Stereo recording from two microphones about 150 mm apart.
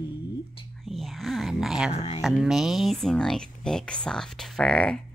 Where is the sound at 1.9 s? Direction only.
45° left (ahead or behind).